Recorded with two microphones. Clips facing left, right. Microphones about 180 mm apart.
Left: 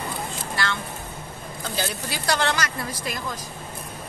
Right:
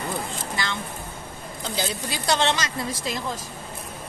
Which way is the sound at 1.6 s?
15° right (ahead or behind).